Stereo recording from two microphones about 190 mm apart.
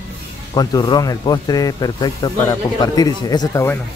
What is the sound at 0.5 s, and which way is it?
Speech, 20° left (ahead or behind).